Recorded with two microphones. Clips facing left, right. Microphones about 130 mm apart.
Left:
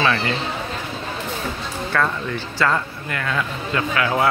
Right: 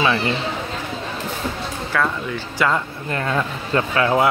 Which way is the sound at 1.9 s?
5° right (ahead or behind).